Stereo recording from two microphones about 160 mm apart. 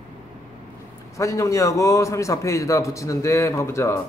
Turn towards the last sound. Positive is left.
turn(degrees=15)  # may be behind; listen again after turning